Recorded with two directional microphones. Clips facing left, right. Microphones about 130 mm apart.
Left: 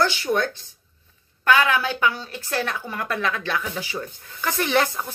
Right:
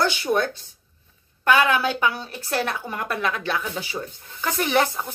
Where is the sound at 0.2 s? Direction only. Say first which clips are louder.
Right 1 dB; 25° right (ahead or behind).